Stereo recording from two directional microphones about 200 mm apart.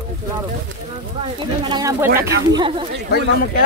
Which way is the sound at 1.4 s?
25° right (ahead or behind).